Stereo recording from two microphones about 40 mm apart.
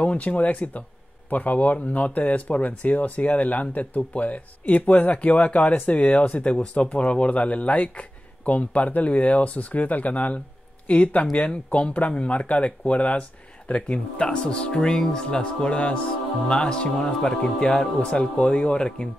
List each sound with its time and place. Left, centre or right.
0.0 s speech: left